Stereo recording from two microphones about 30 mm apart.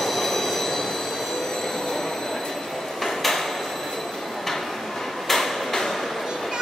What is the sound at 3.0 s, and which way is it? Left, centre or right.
Hammer, centre.